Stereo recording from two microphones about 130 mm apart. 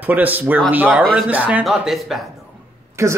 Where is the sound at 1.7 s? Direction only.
Centre (ahead or behind).